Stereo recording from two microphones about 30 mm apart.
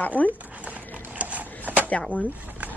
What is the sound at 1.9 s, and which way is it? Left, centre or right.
Speech, left.